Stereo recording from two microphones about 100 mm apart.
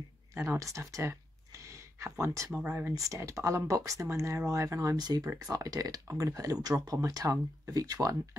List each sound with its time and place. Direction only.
0.3 s speech: 25° right (ahead or behind)